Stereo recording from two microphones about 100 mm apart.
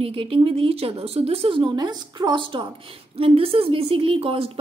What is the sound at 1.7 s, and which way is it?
Speech, 45° right (ahead or behind).